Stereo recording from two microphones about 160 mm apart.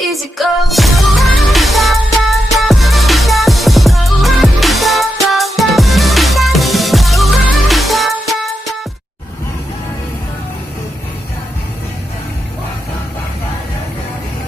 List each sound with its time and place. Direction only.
0.1 s music: centre (ahead or behind)